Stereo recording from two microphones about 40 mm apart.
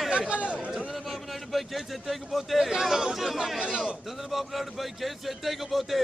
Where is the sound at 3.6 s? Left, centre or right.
Right.